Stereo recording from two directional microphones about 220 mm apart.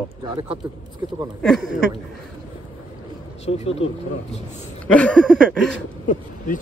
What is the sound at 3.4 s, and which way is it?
Speech, 30° left (ahead or behind).